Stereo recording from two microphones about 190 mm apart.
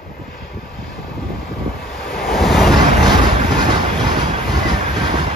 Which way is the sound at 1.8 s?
Centre (ahead or behind).